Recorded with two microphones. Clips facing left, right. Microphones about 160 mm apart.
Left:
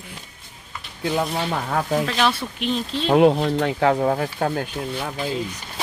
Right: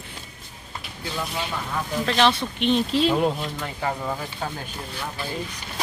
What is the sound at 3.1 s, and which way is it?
Speech, 75° left (ahead or behind).